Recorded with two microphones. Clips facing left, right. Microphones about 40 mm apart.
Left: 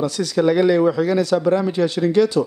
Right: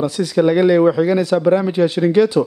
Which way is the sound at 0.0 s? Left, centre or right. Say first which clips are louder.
Right 3 dB; centre.